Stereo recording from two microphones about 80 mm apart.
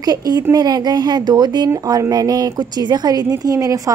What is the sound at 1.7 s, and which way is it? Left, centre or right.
A woman's voice, right.